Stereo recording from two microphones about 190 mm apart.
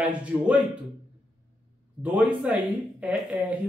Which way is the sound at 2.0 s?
5° right (ahead or behind).